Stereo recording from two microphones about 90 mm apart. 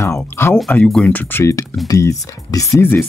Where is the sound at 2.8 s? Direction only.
25° left (ahead or behind).